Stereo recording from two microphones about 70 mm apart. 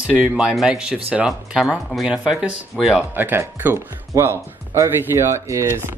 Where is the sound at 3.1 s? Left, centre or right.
Right.